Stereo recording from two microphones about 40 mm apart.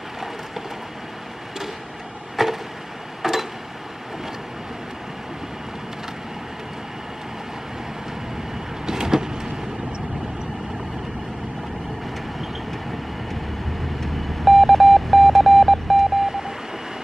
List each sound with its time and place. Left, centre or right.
2.4 s vehicle: centre
3.2 s a sound: centre
8.8 s train: centre
14.0 s radio: centre
16.3 s radio: centre